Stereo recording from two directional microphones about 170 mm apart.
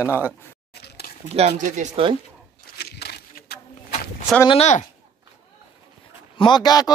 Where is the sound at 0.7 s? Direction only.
70° left (ahead or behind).